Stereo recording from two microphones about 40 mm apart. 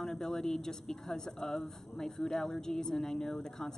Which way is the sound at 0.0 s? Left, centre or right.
Centre.